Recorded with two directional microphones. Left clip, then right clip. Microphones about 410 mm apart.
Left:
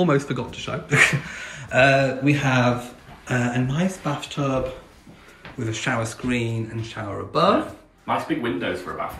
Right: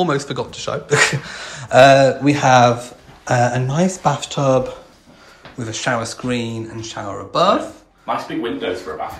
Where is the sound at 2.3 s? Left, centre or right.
Centre.